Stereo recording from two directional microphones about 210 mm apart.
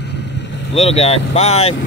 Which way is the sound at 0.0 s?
55° left (ahead or behind).